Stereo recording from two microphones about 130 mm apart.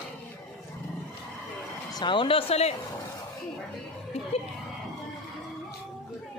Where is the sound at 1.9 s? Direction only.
35° left (ahead or behind); by 2.7 s 50° left (ahead or behind).